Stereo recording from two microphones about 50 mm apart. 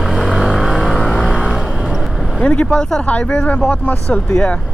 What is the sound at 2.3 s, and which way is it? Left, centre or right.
Speech, left.